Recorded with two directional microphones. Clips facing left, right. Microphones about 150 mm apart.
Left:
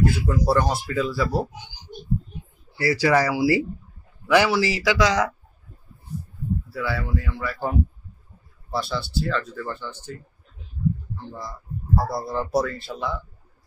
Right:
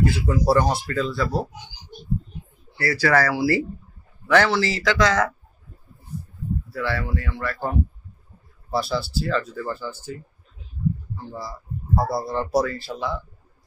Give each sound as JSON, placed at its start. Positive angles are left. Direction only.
{"t": 0.0, "sound": "speech", "side_deg": -5}
{"t": 2.8, "sound": "speech", "side_deg": 15}
{"t": 6.7, "sound": "speech", "side_deg": 5}